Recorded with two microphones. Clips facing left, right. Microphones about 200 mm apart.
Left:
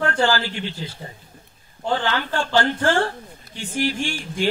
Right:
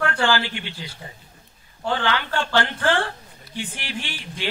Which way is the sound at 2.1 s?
45° left (ahead or behind).